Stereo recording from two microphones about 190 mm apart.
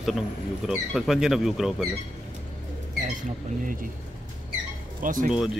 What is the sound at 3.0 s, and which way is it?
Speech, 45° right (ahead or behind).